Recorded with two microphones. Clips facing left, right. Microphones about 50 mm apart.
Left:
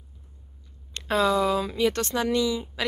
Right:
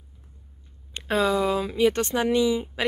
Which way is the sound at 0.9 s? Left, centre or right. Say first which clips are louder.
Even; centre.